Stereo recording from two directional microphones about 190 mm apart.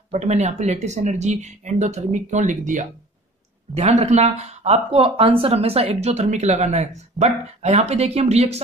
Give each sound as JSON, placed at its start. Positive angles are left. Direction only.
{"t": 0.1, "sound": "speech", "side_deg": -35}